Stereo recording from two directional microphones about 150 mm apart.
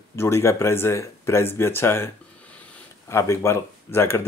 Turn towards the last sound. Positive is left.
turn(degrees=15)  # may be behind; listen again after turning